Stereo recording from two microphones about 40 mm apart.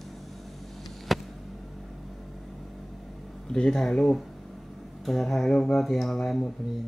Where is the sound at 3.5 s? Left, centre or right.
Centre.